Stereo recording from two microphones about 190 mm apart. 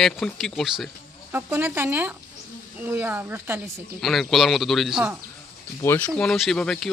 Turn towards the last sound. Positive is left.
turn(degrees=5)  # may be behind; listen again after turning